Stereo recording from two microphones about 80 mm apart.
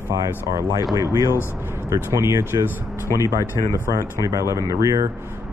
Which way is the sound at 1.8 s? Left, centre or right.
Right.